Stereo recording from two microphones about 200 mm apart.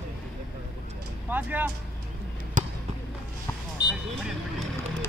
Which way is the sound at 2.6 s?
40° right (ahead or behind).